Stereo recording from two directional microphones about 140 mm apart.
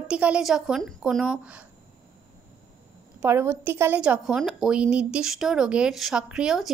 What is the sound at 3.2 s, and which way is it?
A woman's voice, 15° right (ahead or behind).